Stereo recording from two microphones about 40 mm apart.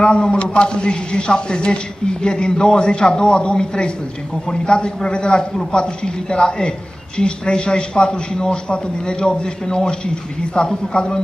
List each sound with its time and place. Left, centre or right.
0.0 s a man's voice: left